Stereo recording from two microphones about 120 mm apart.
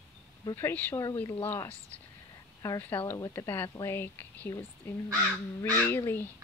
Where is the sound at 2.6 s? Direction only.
20° left (ahead or behind).